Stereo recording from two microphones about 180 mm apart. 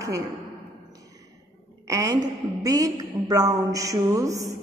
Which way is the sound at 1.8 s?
20° right (ahead or behind).